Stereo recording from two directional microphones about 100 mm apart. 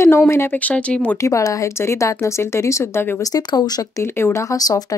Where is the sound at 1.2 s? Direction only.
30° left (ahead or behind).